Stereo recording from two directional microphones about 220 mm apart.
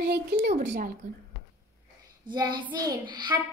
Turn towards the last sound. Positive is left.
turn(degrees=-20)  # may be behind; listen again after turning